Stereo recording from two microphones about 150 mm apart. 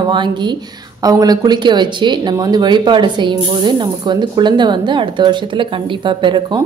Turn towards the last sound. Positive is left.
turn(degrees=-30)  # may be behind; listen again after turning